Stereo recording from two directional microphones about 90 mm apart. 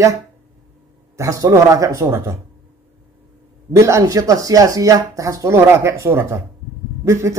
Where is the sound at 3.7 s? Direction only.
35° right (ahead or behind).